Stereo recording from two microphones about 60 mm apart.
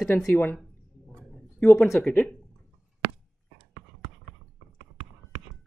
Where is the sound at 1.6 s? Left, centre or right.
Left.